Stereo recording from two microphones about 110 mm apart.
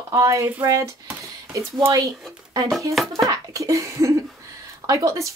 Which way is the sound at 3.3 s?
30° right (ahead or behind).